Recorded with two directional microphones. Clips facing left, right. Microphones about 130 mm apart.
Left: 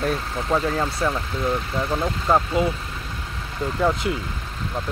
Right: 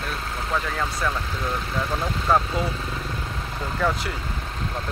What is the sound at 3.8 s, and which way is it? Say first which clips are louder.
Speech: left 3 dB; 20° left (ahead or behind).